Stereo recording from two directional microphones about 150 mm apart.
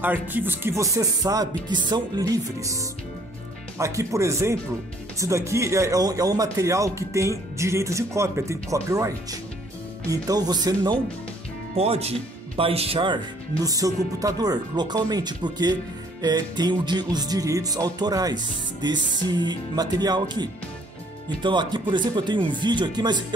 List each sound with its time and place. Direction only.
0.0 s music: 10° right (ahead or behind); by 11.0 s 25° right (ahead or behind)
11.7 s music: 45° right (ahead or behind)
21.4 s speech: 30° right (ahead or behind)